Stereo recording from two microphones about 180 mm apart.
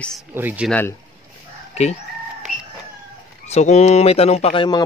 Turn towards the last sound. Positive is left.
turn(degrees=35)  # may be behind; listen again after turning